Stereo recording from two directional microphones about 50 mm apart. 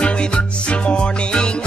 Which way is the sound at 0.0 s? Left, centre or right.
Left.